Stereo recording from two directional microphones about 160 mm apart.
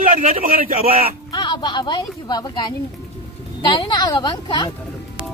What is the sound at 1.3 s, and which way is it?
Speech, 25° left (ahead or behind).